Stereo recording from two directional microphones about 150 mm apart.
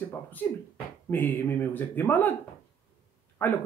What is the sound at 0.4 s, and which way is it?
Speech, 10° left (ahead or behind).